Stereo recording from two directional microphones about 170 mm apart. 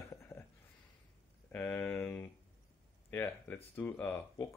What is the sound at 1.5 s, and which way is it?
Speech, 10° left (ahead or behind).